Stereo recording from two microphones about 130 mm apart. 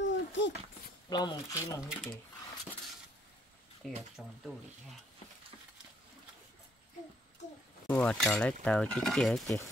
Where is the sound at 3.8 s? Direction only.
Centre (ahead or behind).